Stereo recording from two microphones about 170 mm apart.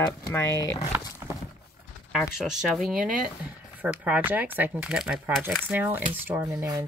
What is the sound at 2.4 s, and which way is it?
Speech, centre (ahead or behind).